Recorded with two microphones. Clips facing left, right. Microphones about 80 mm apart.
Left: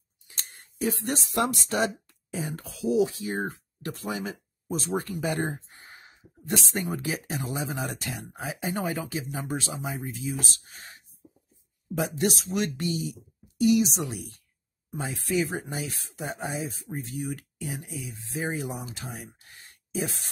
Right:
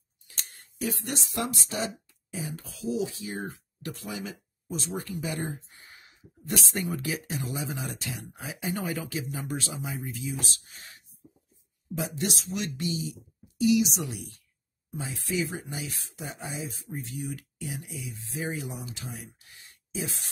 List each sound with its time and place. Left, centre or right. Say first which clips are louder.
1.3 s speech: left 6 dB; left
5.9 s speech: left 3 dB; left
7.8 s speech: left 3 dB; left
8.3 s speech: left 2 dB; left
12.0 s speech: left 5 dB; left